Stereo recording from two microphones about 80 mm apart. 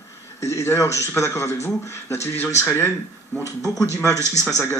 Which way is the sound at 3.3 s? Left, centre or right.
Centre.